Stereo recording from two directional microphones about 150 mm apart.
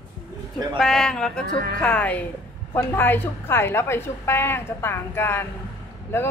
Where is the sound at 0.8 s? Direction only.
5° left (ahead or behind).